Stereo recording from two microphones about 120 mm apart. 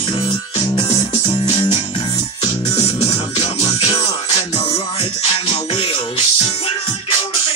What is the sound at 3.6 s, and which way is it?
Music, 60° left (ahead or behind).